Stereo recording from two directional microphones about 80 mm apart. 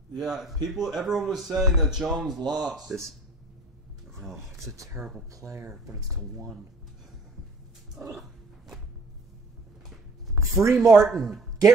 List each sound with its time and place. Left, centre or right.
0.1 s speech: centre
4.2 s speech: centre
5.3 s speech: right
8.1 s dog: centre
10.3 s a sound: right
10.9 s speech: centre